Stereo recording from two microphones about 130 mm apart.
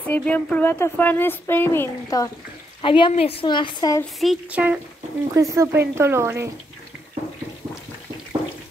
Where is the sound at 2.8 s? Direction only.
40° left (ahead or behind).